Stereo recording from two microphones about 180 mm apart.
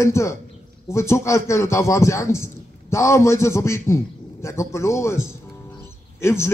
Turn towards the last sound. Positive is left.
turn(degrees=15)  # may be behind; listen again after turning